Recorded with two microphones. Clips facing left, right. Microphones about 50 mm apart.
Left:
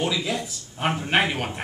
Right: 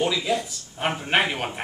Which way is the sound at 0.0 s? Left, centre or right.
Centre.